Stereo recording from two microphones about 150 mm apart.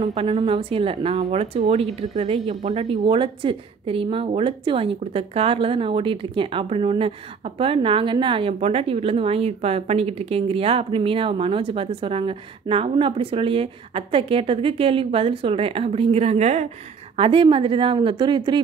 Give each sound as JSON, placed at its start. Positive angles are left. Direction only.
{"t": 0.3, "sound": "a woman's voice", "side_deg": -30}
{"t": 2.9, "sound": "a woman's voice", "side_deg": -30}
{"t": 17.2, "sound": "a woman's voice", "side_deg": -35}